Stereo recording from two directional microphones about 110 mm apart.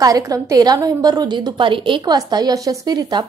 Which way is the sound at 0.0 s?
30° right (ahead or behind).